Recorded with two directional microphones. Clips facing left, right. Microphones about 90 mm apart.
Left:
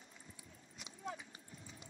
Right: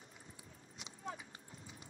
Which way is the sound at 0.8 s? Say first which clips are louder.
Even; 35° right (ahead or behind).